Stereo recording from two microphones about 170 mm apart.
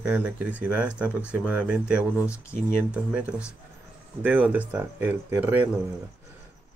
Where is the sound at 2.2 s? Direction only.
15° left (ahead or behind).